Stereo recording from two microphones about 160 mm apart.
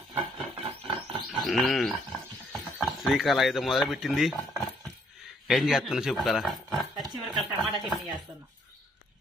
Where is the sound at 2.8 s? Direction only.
Centre (ahead or behind).